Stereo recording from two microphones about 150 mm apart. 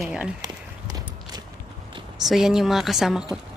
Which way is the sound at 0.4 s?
25° right (ahead or behind).